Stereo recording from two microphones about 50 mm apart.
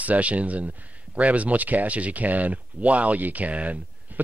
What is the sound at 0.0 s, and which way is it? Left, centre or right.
Speech, right.